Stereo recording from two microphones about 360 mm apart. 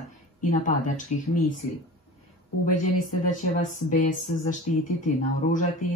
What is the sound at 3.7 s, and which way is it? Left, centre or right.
Speech, left.